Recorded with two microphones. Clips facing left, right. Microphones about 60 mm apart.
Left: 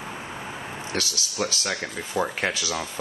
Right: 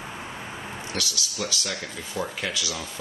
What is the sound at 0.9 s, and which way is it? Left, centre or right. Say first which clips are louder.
Speech: left 4 dB; left.